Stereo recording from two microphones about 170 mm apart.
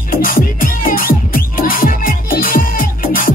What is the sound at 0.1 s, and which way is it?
Music, 55° left (ahead or behind).